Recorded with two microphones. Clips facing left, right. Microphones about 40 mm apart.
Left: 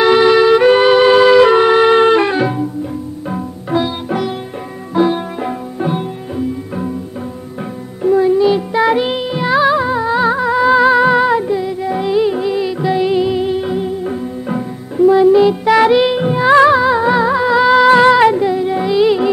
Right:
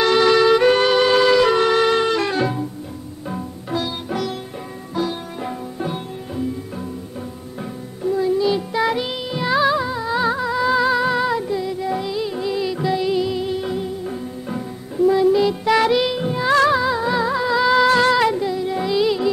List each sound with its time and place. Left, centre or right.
0.0 s music: centre
8.0 s music: left